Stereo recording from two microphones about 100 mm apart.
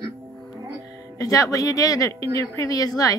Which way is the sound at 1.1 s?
35° left (ahead or behind).